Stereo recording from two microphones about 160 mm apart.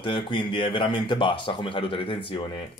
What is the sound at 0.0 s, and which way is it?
Speech, 30° left (ahead or behind).